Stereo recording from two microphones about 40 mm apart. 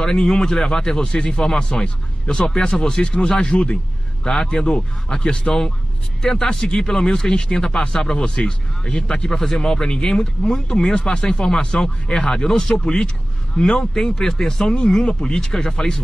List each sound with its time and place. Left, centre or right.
0.0 s speech: centre
5.1 s speech: centre